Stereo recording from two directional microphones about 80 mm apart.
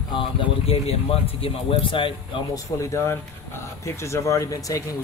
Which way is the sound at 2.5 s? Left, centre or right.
Left.